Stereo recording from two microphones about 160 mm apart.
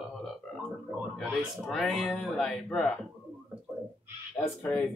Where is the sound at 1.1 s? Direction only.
5° left (ahead or behind).